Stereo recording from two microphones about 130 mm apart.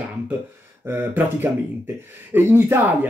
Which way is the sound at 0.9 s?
15° right (ahead or behind).